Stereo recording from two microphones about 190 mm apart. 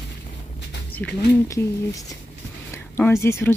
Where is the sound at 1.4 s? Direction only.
15° left (ahead or behind).